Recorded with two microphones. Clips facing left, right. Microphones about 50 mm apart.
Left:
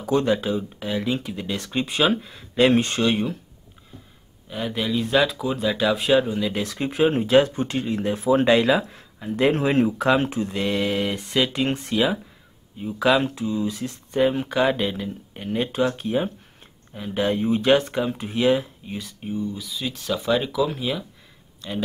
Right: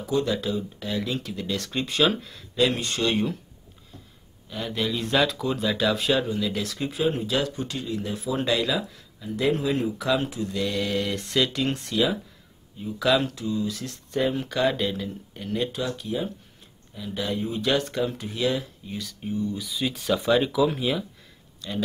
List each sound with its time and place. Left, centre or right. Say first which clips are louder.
0.2 s speech: left 4 dB; left
2.5 s speech: left 6 dB; left
3.0 s speech: left 3 dB; centre
4.5 s speech: left 2 dB; centre
15.7 s speech: left 7 dB; left; by 21.0 s centre
21.5 s speech: left 1 dB; centre